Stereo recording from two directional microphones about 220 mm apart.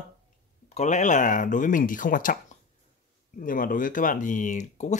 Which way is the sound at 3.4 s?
40° left (ahead or behind).